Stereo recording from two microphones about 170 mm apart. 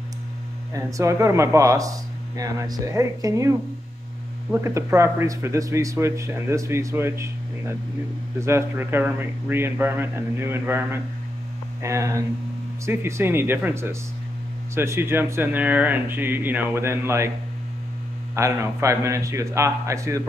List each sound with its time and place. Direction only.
0.7 s speech: 20° right (ahead or behind)
18.3 s speech: 15° right (ahead or behind)